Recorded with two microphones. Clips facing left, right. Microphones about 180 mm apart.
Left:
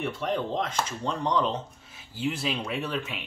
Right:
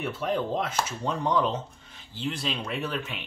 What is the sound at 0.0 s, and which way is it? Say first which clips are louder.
Speech: right 1 dB; 5° right (ahead or behind).